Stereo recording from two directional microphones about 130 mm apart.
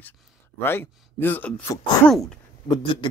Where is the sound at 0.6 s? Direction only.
15° left (ahead or behind).